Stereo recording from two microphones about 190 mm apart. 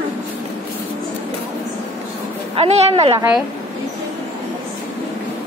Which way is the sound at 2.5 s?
30° right (ahead or behind).